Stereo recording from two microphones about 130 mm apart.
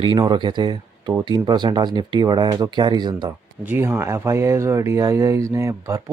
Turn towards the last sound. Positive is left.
turn(degrees=-25)  # may be behind; listen again after turning